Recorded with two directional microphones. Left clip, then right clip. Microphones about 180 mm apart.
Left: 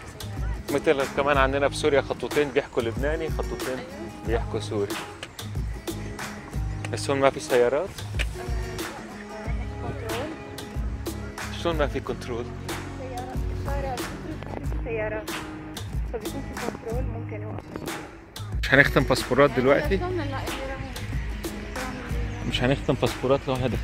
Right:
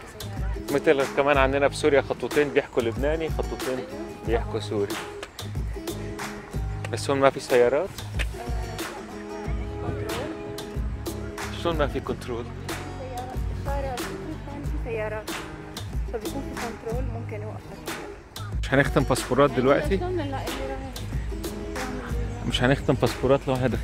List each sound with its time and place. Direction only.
0.7 s speech: 15° right (ahead or behind)
4.3 s speech: 15° right (ahead or behind)
6.9 s speech: 15° right (ahead or behind)
11.6 s speech: centre (ahead or behind)
18.6 s speech: 5° right (ahead or behind)
20.0 s speech: 45° right (ahead or behind)
22.5 s speech: 15° right (ahead or behind)